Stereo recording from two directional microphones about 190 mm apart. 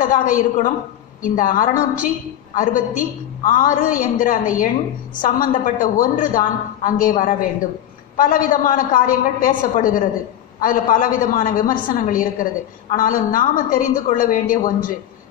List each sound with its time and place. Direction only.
0.0 s a woman's voice: 45° left (ahead or behind)